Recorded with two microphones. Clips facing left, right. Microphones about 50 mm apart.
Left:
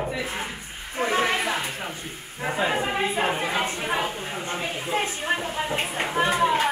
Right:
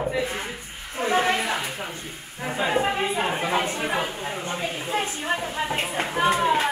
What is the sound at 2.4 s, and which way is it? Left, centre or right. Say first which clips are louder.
Speech: left 1 dB; centre.